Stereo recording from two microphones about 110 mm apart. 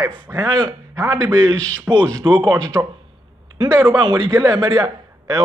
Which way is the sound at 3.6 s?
45° right (ahead or behind).